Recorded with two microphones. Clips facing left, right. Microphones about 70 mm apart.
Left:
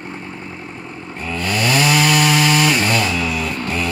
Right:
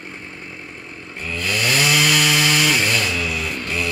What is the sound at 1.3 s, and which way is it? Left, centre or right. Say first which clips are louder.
Chainsaw: left 3 dB; left.